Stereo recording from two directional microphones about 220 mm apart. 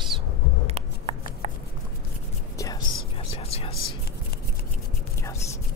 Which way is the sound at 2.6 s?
20° left (ahead or behind).